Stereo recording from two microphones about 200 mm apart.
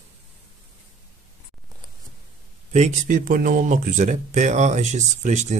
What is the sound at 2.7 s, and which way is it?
Speech, 40° right (ahead or behind).